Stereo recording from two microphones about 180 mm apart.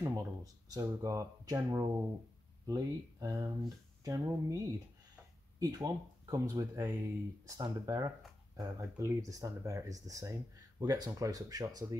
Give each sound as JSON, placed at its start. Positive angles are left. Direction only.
{"t": 0.0, "sound": "speech", "side_deg": -20}
{"t": 5.6, "sound": "speech", "side_deg": -20}